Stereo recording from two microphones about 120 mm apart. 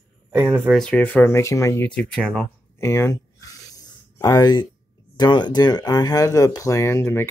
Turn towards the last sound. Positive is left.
turn(degrees=20)  # may be behind; listen again after turning